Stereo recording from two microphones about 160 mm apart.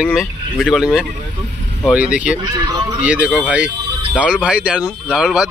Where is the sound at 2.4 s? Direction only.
25° right (ahead or behind).